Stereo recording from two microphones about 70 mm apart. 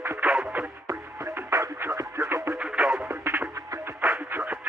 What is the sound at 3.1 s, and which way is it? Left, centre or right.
Music, right.